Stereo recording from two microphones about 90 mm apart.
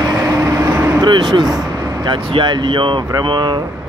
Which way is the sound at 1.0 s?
55° right (ahead or behind).